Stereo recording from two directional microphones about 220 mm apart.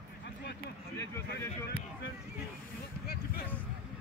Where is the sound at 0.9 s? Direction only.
10° left (ahead or behind).